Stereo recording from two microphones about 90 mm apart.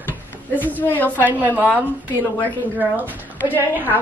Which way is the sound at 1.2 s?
20° right (ahead or behind).